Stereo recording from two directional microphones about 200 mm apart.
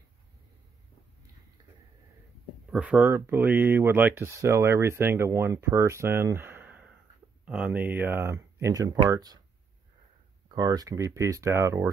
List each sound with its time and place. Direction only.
2.7 s speech: 5° right (ahead or behind)
10.5 s speech: 20° right (ahead or behind)